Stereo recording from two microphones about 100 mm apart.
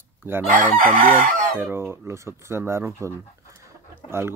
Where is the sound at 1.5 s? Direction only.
20° right (ahead or behind).